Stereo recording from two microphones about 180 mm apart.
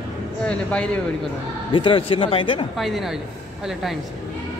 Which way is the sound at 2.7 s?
Centre (ahead or behind).